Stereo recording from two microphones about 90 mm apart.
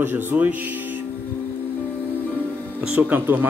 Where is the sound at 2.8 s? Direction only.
15° right (ahead or behind).